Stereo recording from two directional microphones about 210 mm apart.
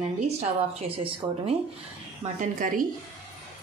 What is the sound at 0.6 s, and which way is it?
Speech, 25° right (ahead or behind).